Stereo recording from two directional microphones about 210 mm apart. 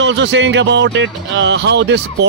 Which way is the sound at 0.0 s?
60° right (ahead or behind).